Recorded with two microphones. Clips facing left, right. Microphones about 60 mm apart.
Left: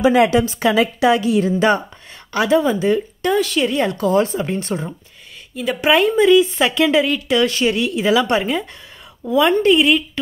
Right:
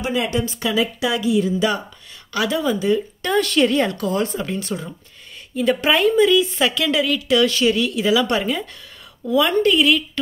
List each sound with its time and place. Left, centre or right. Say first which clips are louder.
0.1 s a woman's voice: left 8 dB; left
0.7 s a woman's voice: left 6 dB; left
2.3 s speech: left 5 dB; left
3.3 s a woman's voice: even; centre
3.9 s speech: left 5 dB; left
5.8 s speech: left 3 dB; centre